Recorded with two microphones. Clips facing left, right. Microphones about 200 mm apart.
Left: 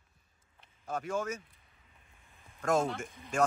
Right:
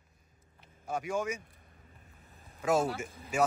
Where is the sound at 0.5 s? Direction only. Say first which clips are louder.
Right 1 dB; 10° right (ahead or behind).